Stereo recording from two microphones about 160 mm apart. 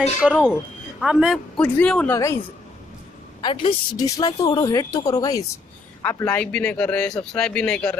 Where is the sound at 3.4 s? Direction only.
30° left (ahead or behind).